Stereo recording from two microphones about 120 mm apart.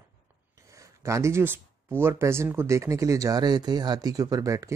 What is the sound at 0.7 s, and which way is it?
Speech, 25° right (ahead or behind).